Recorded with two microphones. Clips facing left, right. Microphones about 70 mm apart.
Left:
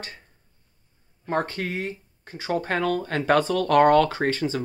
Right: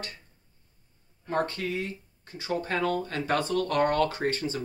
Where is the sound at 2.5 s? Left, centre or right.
Left.